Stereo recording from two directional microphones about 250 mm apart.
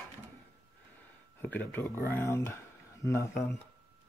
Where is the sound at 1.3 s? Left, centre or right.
Centre.